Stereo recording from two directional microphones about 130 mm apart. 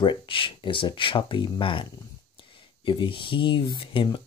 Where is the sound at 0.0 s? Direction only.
40° left (ahead or behind).